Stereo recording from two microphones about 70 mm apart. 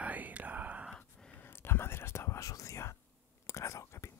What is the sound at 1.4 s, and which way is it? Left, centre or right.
Whispering, left.